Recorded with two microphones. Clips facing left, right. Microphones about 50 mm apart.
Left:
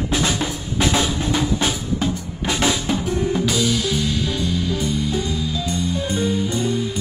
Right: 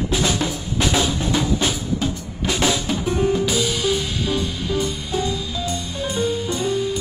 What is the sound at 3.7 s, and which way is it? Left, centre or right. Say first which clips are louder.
Music: even; centre.